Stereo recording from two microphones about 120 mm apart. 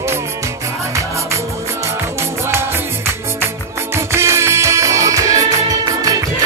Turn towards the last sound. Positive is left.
turn(degrees=-30)  # may be behind; listen again after turning